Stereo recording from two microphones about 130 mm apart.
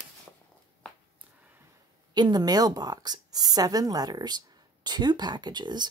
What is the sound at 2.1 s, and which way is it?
A woman's voice, 30° right (ahead or behind).